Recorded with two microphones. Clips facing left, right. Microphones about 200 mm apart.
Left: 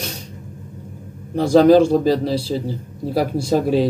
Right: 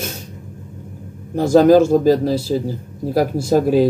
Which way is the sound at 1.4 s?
5° right (ahead or behind).